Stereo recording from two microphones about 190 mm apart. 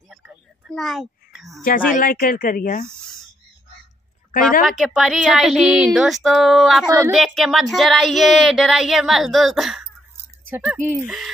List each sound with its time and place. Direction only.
0.7 s a child's voice: centre (ahead or behind)
2.0 s speech: 45° left (ahead or behind)
4.3 s a woman's voice: 45° left (ahead or behind)
4.6 s speech: centre (ahead or behind)